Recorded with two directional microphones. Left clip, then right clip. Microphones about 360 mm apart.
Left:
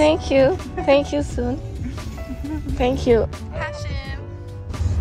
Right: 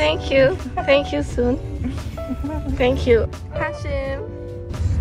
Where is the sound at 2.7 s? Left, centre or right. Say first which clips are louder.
Right 1 dB; centre.